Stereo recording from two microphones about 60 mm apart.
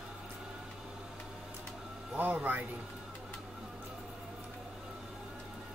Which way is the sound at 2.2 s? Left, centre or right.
Right.